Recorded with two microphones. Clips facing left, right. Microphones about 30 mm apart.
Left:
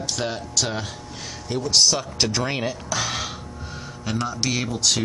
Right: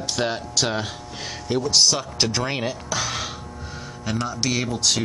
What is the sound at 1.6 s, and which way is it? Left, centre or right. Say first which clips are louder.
Speech: left 1 dB; centre.